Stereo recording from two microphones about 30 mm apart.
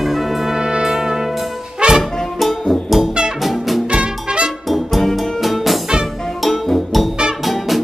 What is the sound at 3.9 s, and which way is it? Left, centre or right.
Music, right.